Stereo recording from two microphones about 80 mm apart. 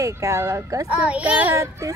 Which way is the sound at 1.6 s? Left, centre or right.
Right.